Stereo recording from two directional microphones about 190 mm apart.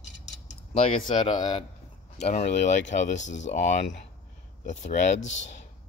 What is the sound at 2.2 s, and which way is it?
Speech, 40° left (ahead or behind).